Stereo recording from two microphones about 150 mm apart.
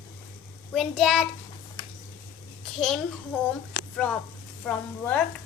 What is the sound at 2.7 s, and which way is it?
Speech, 5° left (ahead or behind).